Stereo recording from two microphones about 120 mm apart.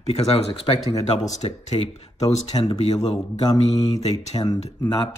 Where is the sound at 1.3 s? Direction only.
75° left (ahead or behind).